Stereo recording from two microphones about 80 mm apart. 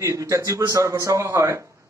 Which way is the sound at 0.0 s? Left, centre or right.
Right.